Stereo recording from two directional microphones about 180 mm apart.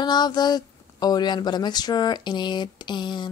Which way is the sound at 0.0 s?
25° left (ahead or behind).